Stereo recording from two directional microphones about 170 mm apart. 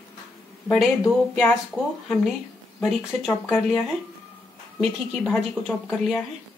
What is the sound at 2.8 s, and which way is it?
Speech, centre (ahead or behind).